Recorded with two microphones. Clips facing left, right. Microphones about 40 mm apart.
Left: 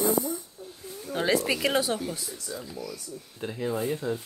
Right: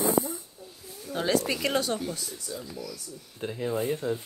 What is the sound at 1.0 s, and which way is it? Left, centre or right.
Speech, centre.